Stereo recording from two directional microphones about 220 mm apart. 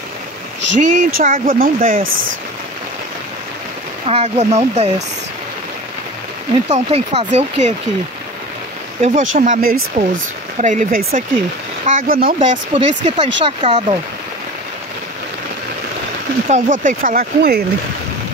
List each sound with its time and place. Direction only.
0.7 s speech: 35° right (ahead or behind)
4.0 s speech: 30° right (ahead or behind)
6.7 s speech: 30° right (ahead or behind)
9.0 s speech: 35° right (ahead or behind)
12.7 s speech: 30° right (ahead or behind)
16.4 s speech: 35° right (ahead or behind)